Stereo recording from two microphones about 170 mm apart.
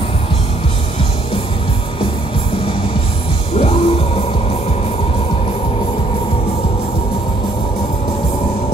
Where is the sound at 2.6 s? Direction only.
35° left (ahead or behind).